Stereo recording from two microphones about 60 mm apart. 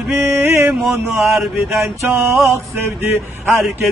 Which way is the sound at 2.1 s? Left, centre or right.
Right.